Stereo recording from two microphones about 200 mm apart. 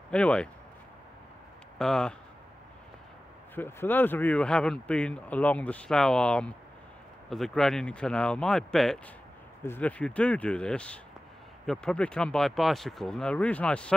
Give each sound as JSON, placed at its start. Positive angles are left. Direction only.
{"t": 0.1, "sound": "speech", "side_deg": 5}
{"t": 1.8, "sound": "speech", "side_deg": 5}
{"t": 3.5, "sound": "speech", "side_deg": 10}